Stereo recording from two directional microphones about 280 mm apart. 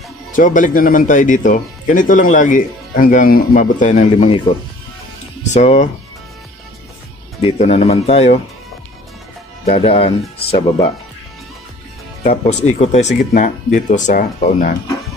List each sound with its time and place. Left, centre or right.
0.4 s speech: left
5.5 s speech: left
7.4 s speech: left
9.7 s speech: left
12.2 s speech: left